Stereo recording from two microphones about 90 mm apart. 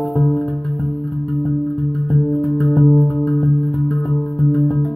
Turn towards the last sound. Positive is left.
turn(degrees=20)  # may be behind; listen again after turning